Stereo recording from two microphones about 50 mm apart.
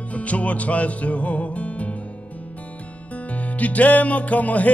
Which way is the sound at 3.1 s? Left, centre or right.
Left.